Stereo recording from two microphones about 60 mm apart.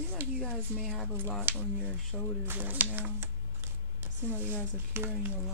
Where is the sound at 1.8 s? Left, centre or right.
Centre.